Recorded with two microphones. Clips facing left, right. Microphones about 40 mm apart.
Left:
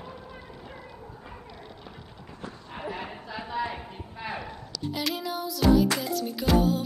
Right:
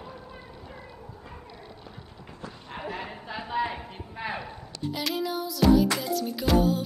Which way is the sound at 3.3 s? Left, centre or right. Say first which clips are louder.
Right 2 dB; centre.